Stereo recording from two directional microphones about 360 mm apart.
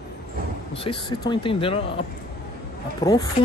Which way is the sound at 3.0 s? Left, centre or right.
Centre.